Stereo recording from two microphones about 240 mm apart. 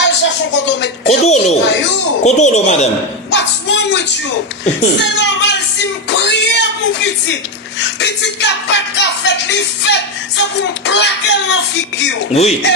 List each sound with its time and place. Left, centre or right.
0.0 s a sound: left
1.0 s speech: left
3.3 s a sound: left
4.8 s speech: left
7.8 s music: left
12.3 s speech: left